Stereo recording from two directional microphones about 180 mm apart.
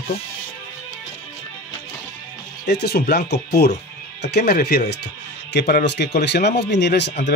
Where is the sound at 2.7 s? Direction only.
65° left (ahead or behind).